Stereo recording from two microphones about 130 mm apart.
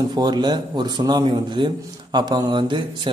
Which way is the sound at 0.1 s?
30° right (ahead or behind).